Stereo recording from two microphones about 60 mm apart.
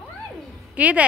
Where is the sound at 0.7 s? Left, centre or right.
Right.